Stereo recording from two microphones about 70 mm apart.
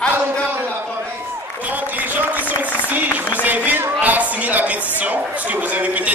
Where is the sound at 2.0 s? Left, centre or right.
Right.